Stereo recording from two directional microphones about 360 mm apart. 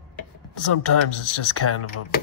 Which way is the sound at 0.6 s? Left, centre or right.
Left.